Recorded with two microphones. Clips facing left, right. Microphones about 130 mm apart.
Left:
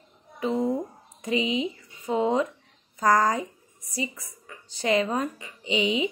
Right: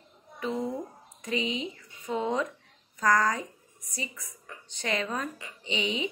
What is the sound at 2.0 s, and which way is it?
A woman's voice, 35° left (ahead or behind).